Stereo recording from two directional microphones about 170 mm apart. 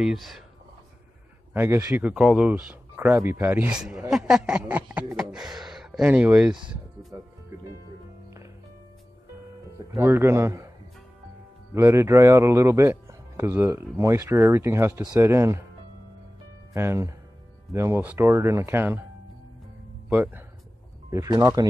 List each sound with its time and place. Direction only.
0.0 s speech: centre (ahead or behind)
1.5 s speech: 15° right (ahead or behind)
6.7 s music: centre (ahead or behind)
9.9 s speech: 15° right (ahead or behind)
11.7 s speech: 15° right (ahead or behind)
16.7 s speech: 15° right (ahead or behind)
20.1 s speech: 10° right (ahead or behind)